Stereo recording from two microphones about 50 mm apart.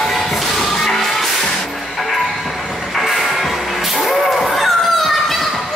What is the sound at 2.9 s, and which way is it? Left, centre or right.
Music, centre.